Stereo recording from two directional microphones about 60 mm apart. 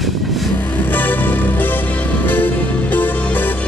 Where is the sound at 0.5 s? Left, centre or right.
Left.